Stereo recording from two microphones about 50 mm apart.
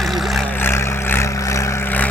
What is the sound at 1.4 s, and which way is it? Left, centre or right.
Vehicle, left.